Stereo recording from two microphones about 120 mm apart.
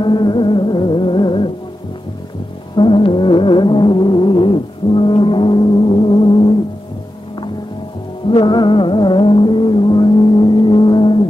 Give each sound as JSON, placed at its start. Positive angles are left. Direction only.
{"t": 0.0, "sound": "music", "side_deg": 40}
{"t": 2.7, "sound": "music", "side_deg": 45}
{"t": 8.3, "sound": "music", "side_deg": 40}